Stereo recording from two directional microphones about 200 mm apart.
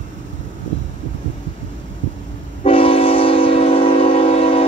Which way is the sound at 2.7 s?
25° left (ahead or behind).